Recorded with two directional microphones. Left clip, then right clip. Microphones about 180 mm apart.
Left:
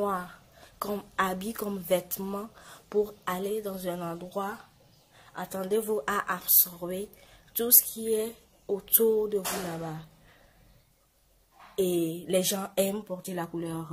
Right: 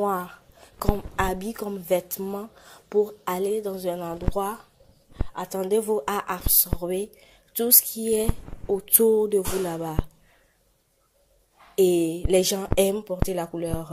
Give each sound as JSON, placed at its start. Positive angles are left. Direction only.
{"t": 0.0, "sound": "a woman's voice", "side_deg": -20}
{"t": 11.7, "sound": "speech", "side_deg": -25}